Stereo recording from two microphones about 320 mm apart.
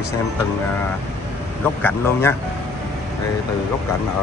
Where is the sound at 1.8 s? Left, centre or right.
Centre.